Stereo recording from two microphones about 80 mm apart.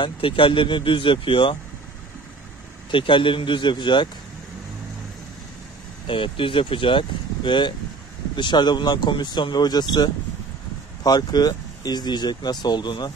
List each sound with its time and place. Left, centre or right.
0.0 s speech: left
2.9 s speech: left
6.0 s speech: left
8.4 s speech: left